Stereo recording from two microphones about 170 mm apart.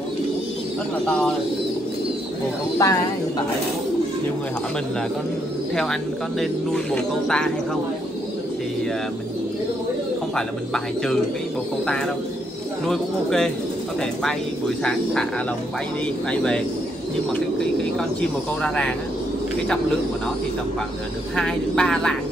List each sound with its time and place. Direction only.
2.8 s speech: 20° left (ahead or behind)
7.2 s speech: 5° left (ahead or behind)
10.3 s speech: 5° left (ahead or behind)
12.8 s speech: 5° left (ahead or behind)
14.8 s speech: 5° left (ahead or behind)
16.3 s speech: 5° left (ahead or behind)
21.4 s speech: 5° left (ahead or behind)